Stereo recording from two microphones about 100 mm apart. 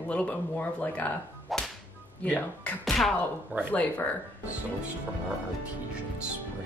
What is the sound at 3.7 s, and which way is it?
Speech, 15° left (ahead or behind).